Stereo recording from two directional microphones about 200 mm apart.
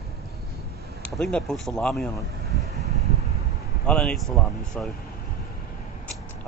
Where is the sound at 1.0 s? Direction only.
5° left (ahead or behind).